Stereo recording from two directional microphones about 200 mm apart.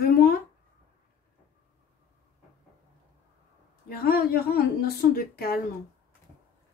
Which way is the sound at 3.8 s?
50° left (ahead or behind).